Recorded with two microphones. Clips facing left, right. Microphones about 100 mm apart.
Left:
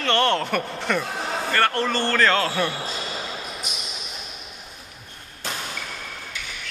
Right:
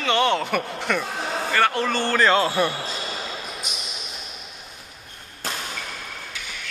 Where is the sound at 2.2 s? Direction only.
15° right (ahead or behind).